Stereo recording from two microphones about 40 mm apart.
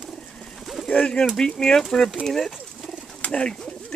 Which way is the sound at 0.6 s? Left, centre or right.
Centre.